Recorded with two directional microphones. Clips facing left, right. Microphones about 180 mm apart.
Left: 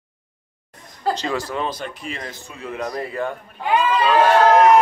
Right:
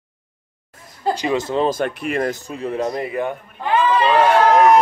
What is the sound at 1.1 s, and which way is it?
Speech, 20° right (ahead or behind).